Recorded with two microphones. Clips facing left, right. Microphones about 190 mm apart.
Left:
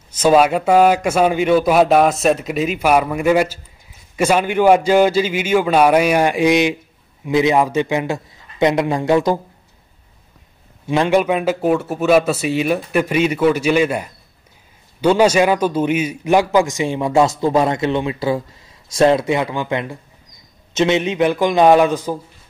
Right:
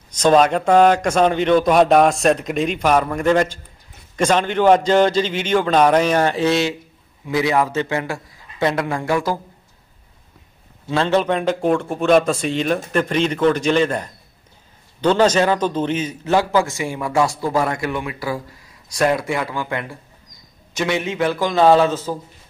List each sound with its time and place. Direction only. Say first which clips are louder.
0.1 s a man's voice: left 1 dB; 5° left (ahead or behind)
10.9 s a man's voice: left 3 dB; 15° left (ahead or behind)